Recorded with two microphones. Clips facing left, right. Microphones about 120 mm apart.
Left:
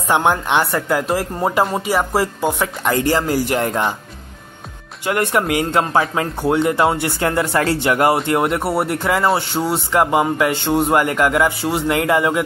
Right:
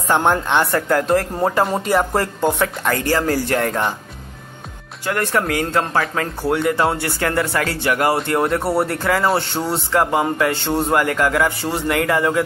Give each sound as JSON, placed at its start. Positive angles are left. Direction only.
{"t": 0.1, "sound": "speech", "side_deg": 10}
{"t": 2.8, "sound": "speech", "side_deg": 20}
{"t": 5.0, "sound": "speech", "side_deg": 15}
{"t": 9.2, "sound": "speech", "side_deg": 5}